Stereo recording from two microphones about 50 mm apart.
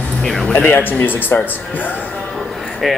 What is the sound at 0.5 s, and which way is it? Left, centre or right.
Speech, left.